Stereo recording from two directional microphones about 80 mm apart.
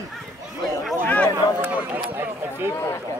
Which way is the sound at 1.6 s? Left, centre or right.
Right.